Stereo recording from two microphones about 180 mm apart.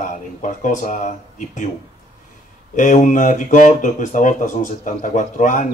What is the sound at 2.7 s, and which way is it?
Speech, 45° left (ahead or behind).